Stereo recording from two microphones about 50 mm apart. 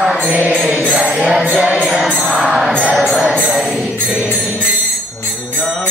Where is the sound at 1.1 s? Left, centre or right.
Centre.